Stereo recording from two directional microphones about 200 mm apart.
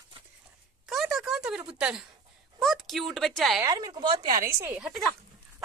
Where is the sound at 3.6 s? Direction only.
20° right (ahead or behind).